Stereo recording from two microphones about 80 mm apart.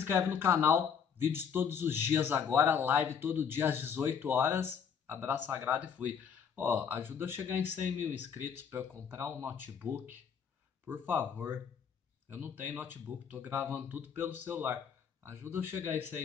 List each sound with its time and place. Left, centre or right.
0.0 s speech: right